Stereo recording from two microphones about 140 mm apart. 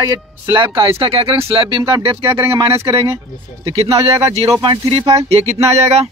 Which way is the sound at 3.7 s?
45° right (ahead or behind).